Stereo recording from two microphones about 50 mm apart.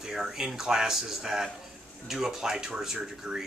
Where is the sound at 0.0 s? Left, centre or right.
Centre.